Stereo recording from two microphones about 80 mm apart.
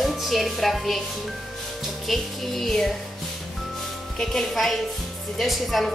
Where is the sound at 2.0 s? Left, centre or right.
Centre.